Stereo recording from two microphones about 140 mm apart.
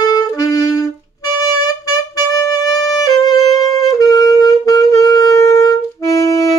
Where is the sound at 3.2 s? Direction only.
25° left (ahead or behind).